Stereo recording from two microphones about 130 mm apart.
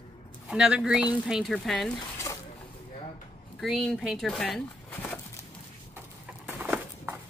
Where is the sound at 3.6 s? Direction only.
Centre (ahead or behind).